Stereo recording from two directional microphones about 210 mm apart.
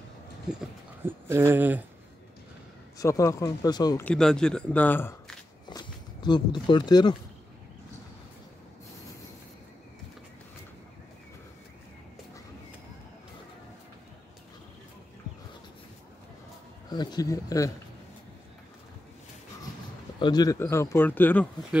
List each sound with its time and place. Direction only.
0.6 s speech: 10° right (ahead or behind)
3.0 s speech: 15° left (ahead or behind)
4.0 s a man's voice: 5° left (ahead or behind)
5.7 s speech: 20° left (ahead or behind)
16.9 s speech: 20° left (ahead or behind)
20.2 s speech: 20° left (ahead or behind)